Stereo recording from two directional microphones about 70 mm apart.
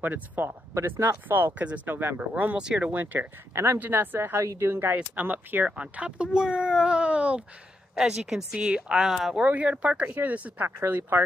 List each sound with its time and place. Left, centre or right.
0.0 s speech: right
0.7 s speech: right
3.5 s speech: right
4.9 s speech: right
5.7 s speech: centre
9.4 s speech: centre